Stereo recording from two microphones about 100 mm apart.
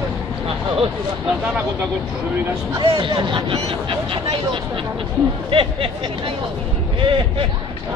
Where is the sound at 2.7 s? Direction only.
45° right (ahead or behind).